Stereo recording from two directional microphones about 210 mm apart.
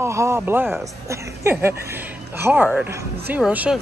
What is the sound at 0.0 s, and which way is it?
Speech, 15° right (ahead or behind).